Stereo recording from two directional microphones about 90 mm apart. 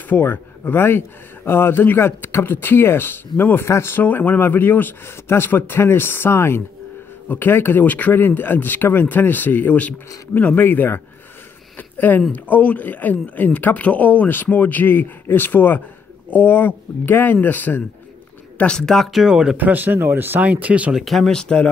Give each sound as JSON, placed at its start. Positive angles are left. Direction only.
{"t": 0.1, "sound": "speech", "side_deg": 20}
{"t": 12.3, "sound": "speech", "side_deg": 15}
{"t": 18.6, "sound": "speech", "side_deg": 10}
{"t": 19.5, "sound": "speech", "side_deg": -20}
{"t": 20.9, "sound": "speech", "side_deg": 0}